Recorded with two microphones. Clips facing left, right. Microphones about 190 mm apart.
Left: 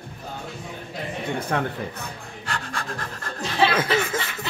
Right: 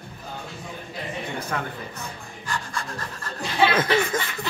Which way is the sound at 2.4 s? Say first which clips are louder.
Even; 70° left (ahead or behind).